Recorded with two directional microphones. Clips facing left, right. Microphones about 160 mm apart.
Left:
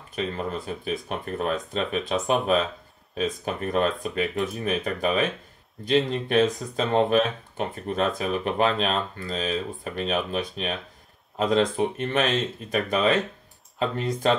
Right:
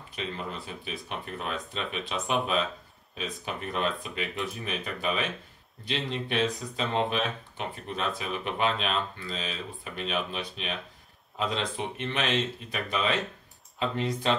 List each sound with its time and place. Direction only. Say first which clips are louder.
0.1 s speech: left 7 dB; 45° left (ahead or behind)
7.5 s speech: left 7 dB; 45° left (ahead or behind)